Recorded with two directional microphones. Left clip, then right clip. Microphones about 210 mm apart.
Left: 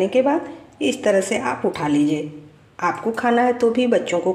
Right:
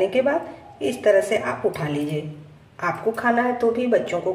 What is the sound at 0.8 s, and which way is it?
Speech, 40° left (ahead or behind).